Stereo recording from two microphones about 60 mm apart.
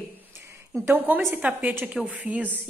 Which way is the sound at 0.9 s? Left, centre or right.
Right.